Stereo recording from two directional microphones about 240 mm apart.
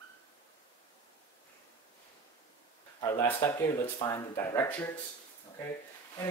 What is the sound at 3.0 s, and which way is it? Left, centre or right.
Speech, centre.